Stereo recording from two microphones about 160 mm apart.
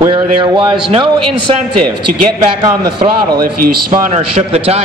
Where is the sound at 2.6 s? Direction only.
25° right (ahead or behind).